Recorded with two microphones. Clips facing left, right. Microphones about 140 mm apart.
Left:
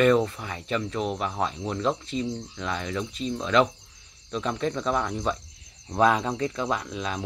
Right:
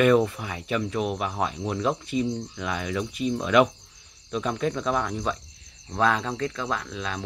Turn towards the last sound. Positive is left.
turn(degrees=5)  # may be behind; listen again after turning